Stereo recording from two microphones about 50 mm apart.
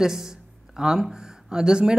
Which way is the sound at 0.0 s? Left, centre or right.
Centre.